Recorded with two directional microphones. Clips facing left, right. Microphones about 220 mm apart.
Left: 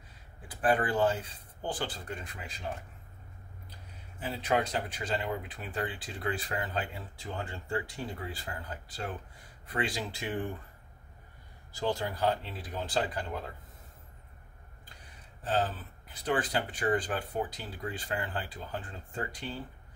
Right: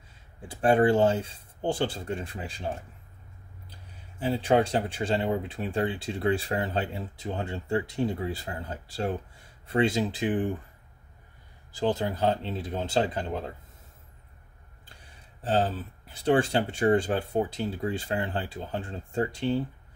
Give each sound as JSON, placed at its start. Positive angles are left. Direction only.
{"t": 0.5, "sound": "speech", "side_deg": -25}
{"t": 4.2, "sound": "speech", "side_deg": -30}
{"t": 11.7, "sound": "speech", "side_deg": -20}
{"t": 15.4, "sound": "speech", "side_deg": -30}